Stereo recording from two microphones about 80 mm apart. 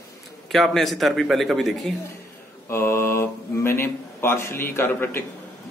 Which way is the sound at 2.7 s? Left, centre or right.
Left.